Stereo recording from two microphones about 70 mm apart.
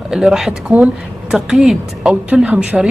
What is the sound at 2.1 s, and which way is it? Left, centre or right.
Speech, centre.